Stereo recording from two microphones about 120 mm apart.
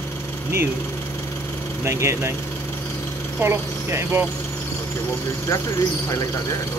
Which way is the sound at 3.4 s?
20° right (ahead or behind).